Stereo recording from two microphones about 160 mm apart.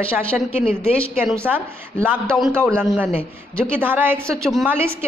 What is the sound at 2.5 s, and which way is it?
A woman's voice, 15° right (ahead or behind).